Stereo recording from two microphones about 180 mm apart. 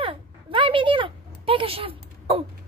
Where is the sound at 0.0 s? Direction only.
30° right (ahead or behind).